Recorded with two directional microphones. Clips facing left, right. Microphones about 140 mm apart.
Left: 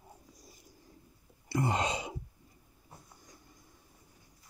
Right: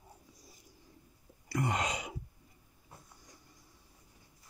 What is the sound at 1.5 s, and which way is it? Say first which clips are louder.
Sneeze: left 2 dB; 30° left (ahead or behind).